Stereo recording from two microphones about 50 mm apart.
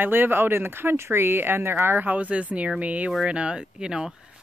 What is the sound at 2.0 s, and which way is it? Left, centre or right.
Speech, right.